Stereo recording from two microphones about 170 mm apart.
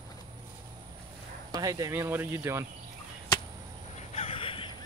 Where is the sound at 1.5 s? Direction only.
20° right (ahead or behind).